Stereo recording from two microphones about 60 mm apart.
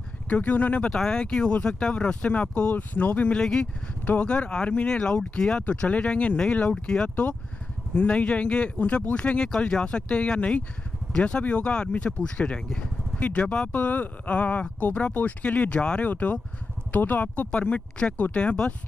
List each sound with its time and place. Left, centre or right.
0.3 s speech: left
0.8 s speech: centre
3.3 s speech: centre